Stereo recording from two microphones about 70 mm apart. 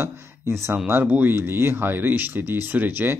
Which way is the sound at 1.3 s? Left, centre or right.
Right.